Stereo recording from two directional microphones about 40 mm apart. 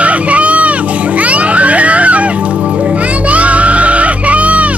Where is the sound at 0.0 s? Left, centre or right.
Right.